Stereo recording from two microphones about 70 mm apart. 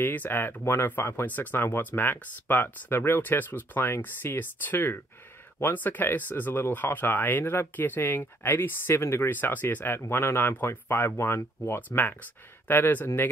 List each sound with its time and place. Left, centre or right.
0.0 s speech: left
9.3 s speech: left